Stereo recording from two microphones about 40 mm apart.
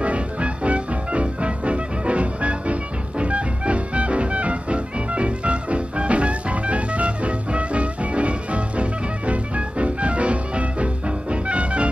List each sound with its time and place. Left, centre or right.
0.0 s music: right